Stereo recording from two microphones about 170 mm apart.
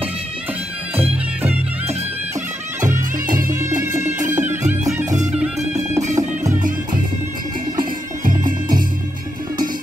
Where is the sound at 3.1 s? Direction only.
55° right (ahead or behind).